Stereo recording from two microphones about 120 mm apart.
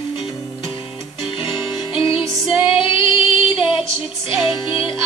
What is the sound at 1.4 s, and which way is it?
Music, 45° left (ahead or behind).